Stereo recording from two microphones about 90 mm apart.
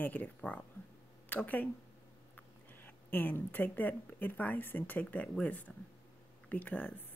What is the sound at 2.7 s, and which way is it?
Speech, 20° left (ahead or behind).